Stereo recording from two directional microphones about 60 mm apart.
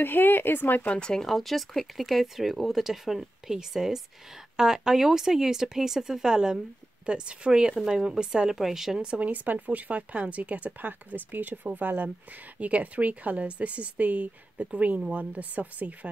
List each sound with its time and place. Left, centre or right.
0.0 s speech: left
0.9 s a woman's voice: centre; by 16.1 s right